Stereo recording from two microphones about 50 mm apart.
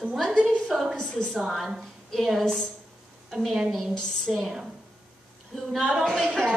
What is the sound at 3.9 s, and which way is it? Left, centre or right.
Speech, centre.